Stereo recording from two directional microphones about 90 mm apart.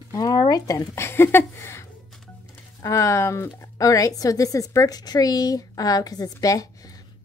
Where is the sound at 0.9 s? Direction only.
25° left (ahead or behind).